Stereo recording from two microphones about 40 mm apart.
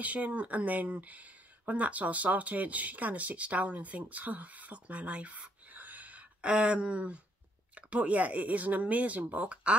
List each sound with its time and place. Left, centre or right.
0.0 s speech: right
6.5 s speech: right